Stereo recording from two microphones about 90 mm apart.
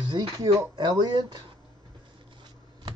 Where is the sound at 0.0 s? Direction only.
55° right (ahead or behind).